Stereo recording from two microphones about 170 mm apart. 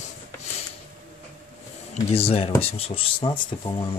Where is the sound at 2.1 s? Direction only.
35° left (ahead or behind).